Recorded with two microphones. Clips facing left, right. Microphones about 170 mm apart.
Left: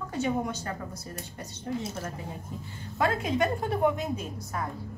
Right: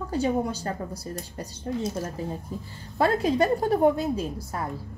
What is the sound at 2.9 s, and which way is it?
A woman's voice, 35° right (ahead or behind).